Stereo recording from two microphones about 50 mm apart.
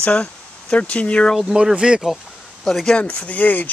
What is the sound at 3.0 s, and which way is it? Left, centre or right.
Speech, left.